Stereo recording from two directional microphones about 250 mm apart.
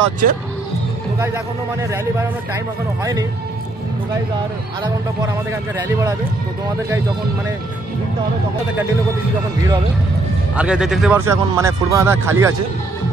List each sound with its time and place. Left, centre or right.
0.2 s speech: right
1.2 s speech: centre
3.0 s speech: centre
4.8 s speech: centre
10.5 s speech: centre